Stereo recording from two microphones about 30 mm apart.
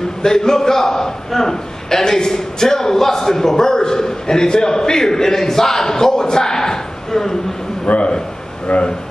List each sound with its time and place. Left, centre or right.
0.2 s a man's voice: centre
7.8 s a man's voice: left